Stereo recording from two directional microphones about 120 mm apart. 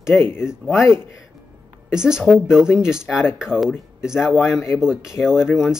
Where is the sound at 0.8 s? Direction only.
20° left (ahead or behind).